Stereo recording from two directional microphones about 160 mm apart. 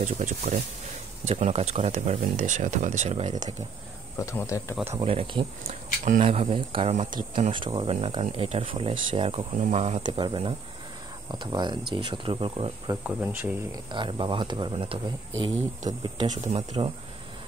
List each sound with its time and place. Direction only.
0.0 s speech: 50° right (ahead or behind)
4.2 s speech: 20° left (ahead or behind)
5.0 s speech: 35° right (ahead or behind)
7.0 s speech: 55° right (ahead or behind)
7.5 s speech: 30° right (ahead or behind)
10.0 s speech: 30° right (ahead or behind)
13.0 s speech: 10° right (ahead or behind)
13.7 s speech: 30° right (ahead or behind)
16.0 s speech: 30° right (ahead or behind)
16.5 s speech: 40° right (ahead or behind)